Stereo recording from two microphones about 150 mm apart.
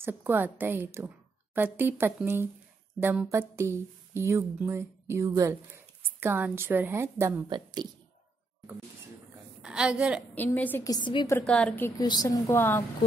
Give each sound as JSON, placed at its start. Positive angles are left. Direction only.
{"t": 0.0, "sound": "a woman's voice", "side_deg": -15}
{"t": 7.4, "sound": "a woman's voice", "side_deg": -30}
{"t": 9.6, "sound": "a woman's voice", "side_deg": -5}
{"t": 10.3, "sound": "a woman's voice", "side_deg": 10}
{"t": 10.8, "sound": "a woman's voice", "side_deg": 25}
{"t": 11.2, "sound": "a woman's voice", "side_deg": 10}
{"t": 12.0, "sound": "a woman's voice", "side_deg": 25}
{"t": 12.5, "sound": "a woman's voice", "side_deg": 15}